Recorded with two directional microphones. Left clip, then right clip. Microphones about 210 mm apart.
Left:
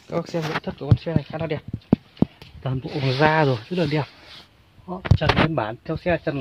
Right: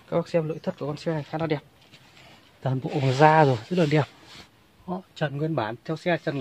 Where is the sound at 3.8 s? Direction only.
15° right (ahead or behind).